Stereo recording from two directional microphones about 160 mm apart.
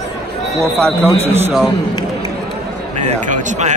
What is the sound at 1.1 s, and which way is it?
Speech, 40° right (ahead or behind).